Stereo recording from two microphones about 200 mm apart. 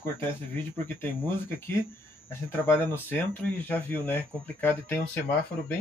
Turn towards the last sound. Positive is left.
turn(degrees=5)  # may be behind; listen again after turning